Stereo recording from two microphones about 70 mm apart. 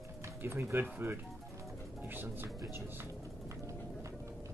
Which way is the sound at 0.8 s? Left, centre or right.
Right.